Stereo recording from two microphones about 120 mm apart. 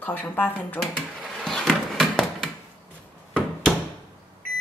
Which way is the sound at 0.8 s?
Centre (ahead or behind).